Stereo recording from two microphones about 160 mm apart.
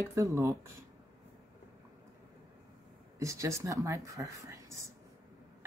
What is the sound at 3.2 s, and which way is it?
Speech, 20° right (ahead or behind).